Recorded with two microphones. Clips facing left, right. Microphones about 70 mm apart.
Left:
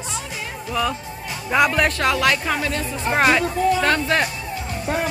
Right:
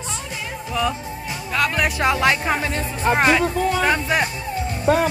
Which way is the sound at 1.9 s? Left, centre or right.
Right.